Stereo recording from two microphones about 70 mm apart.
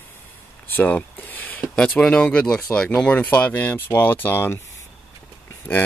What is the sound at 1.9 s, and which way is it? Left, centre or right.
Speech, centre.